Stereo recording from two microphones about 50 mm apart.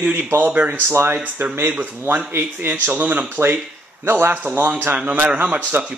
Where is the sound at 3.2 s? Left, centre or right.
Right.